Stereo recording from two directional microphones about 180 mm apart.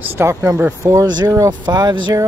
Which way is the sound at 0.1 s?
15° right (ahead or behind).